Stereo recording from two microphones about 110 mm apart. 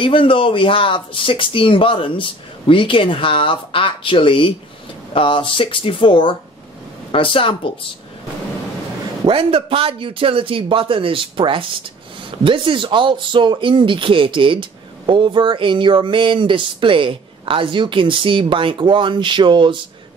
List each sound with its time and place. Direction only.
0.0 s speech: 50° left (ahead or behind)
9.2 s speech: 55° right (ahead or behind)